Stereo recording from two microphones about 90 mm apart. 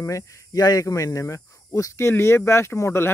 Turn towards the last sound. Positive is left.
turn(degrees=30)  # may be behind; listen again after turning